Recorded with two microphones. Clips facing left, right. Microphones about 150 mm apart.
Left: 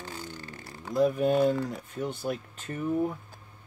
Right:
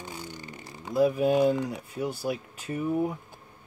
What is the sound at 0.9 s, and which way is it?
Speech, 5° right (ahead or behind).